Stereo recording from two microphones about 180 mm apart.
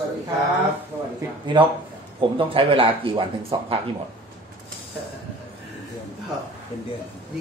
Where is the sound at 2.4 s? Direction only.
30° right (ahead or behind).